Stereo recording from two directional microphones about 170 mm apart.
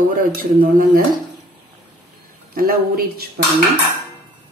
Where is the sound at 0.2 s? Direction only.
55° right (ahead or behind).